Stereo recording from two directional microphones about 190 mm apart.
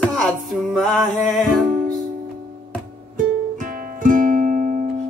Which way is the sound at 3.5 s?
45° right (ahead or behind).